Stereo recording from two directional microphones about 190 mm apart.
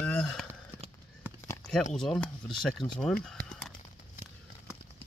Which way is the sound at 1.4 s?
10° left (ahead or behind).